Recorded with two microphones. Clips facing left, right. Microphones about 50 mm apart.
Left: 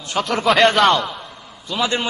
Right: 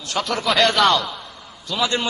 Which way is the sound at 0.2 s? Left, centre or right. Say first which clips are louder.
Left 2 dB; centre.